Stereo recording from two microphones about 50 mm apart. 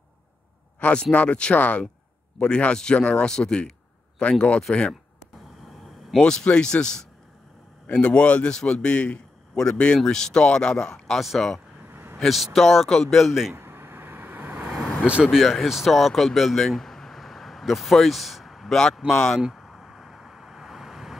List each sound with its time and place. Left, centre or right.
0.8 s speech: left; by 4.9 s centre
6.1 s a man's voice: centre
11.1 s speech: centre
11.9 s a sound: right
12.2 s speech: centre
13.5 s a sound: right
14.6 s vehicle: centre
15.2 s speech: centre
19.1 s speech: centre
19.5 s a sound: centre